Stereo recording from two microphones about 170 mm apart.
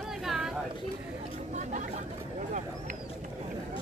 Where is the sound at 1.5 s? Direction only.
45° right (ahead or behind).